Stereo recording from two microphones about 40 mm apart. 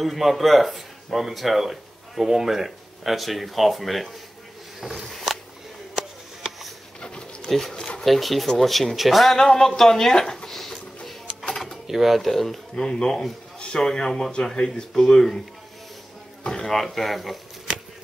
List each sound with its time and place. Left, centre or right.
0.0 s speech: centre
4.7 s a sound: centre
5.0 s a sound: centre
7.0 s a sound: left
7.4 s speech: centre
9.4 s speech: centre
11.9 s speech: centre
12.3 s speech: centre
12.8 s speech: centre
16.6 s speech: centre